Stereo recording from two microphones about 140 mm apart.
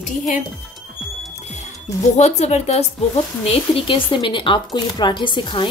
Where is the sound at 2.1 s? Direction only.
55° left (ahead or behind).